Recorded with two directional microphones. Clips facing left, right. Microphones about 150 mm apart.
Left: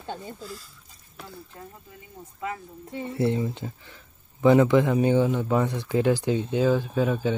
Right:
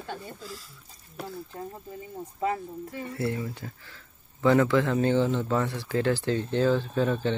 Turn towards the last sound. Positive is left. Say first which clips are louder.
# left 2 dB
turn(degrees=10)  # may be behind; listen again after turning